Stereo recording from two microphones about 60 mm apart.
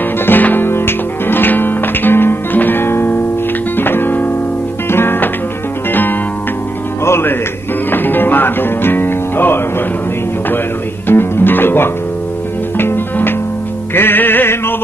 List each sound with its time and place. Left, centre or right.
0.3 s music: left
11.1 s music: left